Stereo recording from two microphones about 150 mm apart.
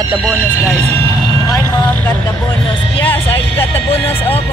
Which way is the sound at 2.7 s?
35° left (ahead or behind).